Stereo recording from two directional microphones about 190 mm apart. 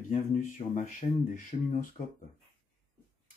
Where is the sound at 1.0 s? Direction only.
35° left (ahead or behind).